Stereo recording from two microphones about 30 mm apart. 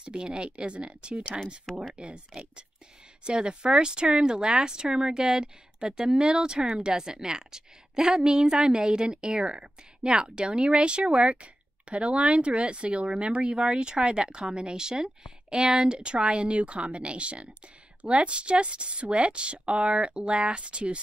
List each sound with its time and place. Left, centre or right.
0.0 s a woman's voice: right
3.3 s a woman's voice: right
13.7 s a woman's voice: right
16.0 s a woman's voice: right